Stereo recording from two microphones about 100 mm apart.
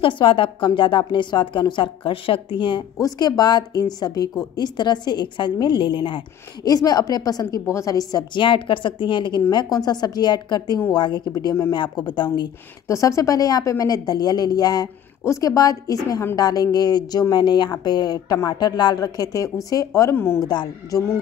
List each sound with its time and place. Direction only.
0.0 s a woman's voice: 60° left (ahead or behind)
3.0 s a woman's voice: 40° left (ahead or behind)
6.7 s speech: 40° left (ahead or behind)
8.5 s a woman's voice: 55° left (ahead or behind)
9.5 s a woman's voice: 40° left (ahead or behind)
12.8 s speech: 30° left (ahead or behind)
20.4 s a woman's voice: 40° left (ahead or behind)